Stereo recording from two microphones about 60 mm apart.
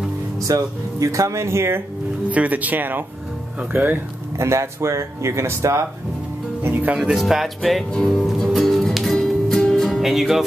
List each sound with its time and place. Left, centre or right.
0.4 s speech: right
2.3 s speech: right
4.4 s speech: right
6.6 s speech: right
7.0 s speech: centre
8.5 s music: centre